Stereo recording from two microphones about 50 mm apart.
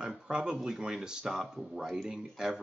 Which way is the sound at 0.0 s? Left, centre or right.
Centre.